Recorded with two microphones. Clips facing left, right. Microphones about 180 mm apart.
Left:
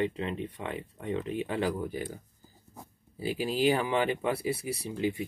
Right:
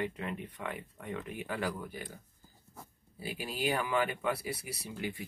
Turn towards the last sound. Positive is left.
turn(degrees=20)  # may be behind; listen again after turning